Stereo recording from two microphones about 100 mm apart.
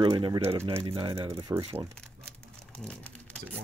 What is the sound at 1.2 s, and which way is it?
Speech, 35° right (ahead or behind).